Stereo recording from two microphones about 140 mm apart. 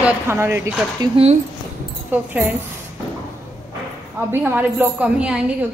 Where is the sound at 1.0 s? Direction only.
30° right (ahead or behind).